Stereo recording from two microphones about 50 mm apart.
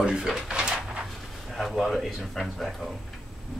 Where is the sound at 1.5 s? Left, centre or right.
Centre.